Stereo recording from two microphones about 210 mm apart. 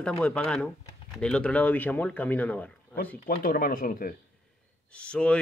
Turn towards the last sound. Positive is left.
turn(degrees=5)  # may be behind; listen again after turning